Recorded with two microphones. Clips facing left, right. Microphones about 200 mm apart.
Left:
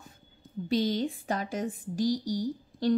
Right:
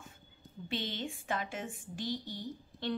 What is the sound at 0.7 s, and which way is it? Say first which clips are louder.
A woman's voice: left 11 dB; 40° left (ahead or behind).